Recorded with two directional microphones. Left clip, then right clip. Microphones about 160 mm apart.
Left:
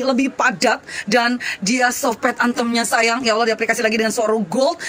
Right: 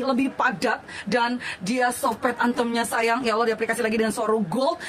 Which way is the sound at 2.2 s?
20° left (ahead or behind).